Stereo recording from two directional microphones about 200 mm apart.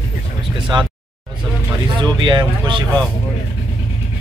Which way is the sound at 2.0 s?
20° right (ahead or behind).